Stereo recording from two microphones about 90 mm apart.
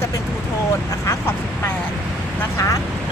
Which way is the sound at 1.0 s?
25° left (ahead or behind).